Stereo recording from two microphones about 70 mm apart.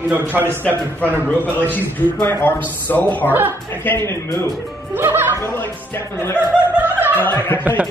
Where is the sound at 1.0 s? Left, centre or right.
Left.